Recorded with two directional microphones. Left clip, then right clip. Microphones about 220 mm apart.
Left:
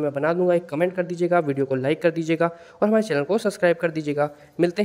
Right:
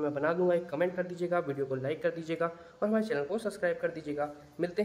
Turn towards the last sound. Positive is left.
turn(degrees=40)  # may be behind; listen again after turning